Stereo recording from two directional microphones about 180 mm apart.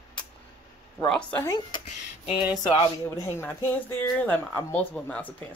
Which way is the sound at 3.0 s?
10° left (ahead or behind).